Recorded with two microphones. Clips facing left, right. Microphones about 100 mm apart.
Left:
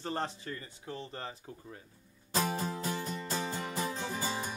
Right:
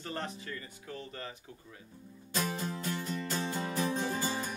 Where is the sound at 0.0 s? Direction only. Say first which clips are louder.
Left 3 dB; 30° left (ahead or behind).